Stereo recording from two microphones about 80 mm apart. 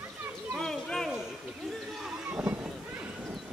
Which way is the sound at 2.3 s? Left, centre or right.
Centre.